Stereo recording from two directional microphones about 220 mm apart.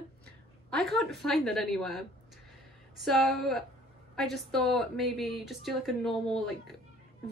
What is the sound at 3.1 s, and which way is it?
Speech, centre (ahead or behind).